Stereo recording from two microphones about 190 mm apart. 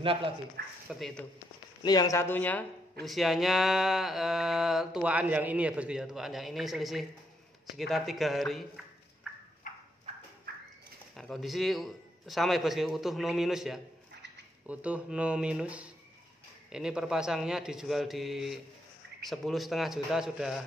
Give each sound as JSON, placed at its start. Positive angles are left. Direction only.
{"t": 0.0, "sound": "speech", "side_deg": -30}
{"t": 0.8, "sound": "speech", "side_deg": 0}
{"t": 1.8, "sound": "speech", "side_deg": 20}
{"t": 9.6, "sound": "clip-clop", "side_deg": 45}
{"t": 11.1, "sound": "speech", "side_deg": 5}